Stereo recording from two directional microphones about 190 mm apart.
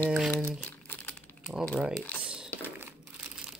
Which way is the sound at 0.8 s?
10° left (ahead or behind).